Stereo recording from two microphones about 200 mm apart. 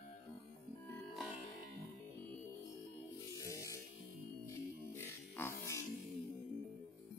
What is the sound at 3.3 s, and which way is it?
Music, 15° left (ahead or behind).